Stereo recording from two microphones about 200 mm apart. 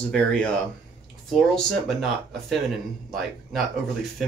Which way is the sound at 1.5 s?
Centre (ahead or behind).